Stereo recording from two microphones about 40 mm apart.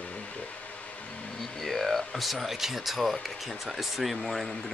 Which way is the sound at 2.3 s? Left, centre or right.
Centre.